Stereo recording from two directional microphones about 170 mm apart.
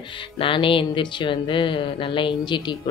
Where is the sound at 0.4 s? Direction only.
30° left (ahead or behind).